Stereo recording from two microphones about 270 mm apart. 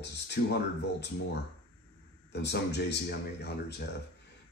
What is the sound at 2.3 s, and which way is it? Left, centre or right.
Speech, left.